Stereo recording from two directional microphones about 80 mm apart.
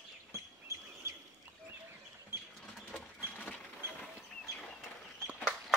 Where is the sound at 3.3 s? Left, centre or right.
Centre.